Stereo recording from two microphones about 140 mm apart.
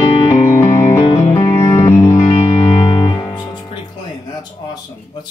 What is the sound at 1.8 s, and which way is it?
Music, 25° left (ahead or behind).